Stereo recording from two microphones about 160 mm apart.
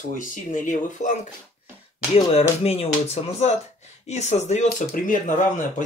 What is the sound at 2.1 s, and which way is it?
Speech, 40° left (ahead or behind).